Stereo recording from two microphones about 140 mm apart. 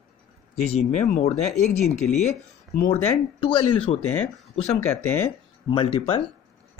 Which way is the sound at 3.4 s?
40° left (ahead or behind).